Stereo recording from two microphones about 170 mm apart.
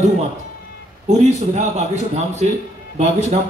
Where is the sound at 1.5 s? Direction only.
40° right (ahead or behind).